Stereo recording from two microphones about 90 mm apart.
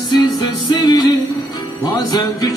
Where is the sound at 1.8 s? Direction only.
45° left (ahead or behind).